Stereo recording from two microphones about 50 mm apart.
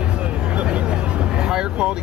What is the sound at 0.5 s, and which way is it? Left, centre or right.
Speech, right.